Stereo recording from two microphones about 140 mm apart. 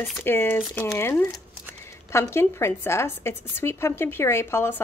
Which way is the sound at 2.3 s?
20° left (ahead or behind).